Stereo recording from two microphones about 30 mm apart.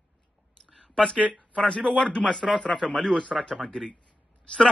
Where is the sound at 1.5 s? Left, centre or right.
Left.